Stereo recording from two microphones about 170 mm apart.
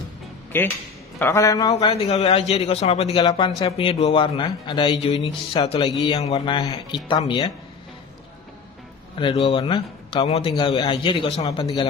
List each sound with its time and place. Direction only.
0.5 s a man's voice: 10° left (ahead or behind)
1.9 s a man's voice: 40° left (ahead or behind)
3.2 s a man's voice: 25° left (ahead or behind)
9.2 s a man's voice: 30° left (ahead or behind)
10.2 s a man's voice: 35° left (ahead or behind)
11.4 s a man's voice: 20° left (ahead or behind)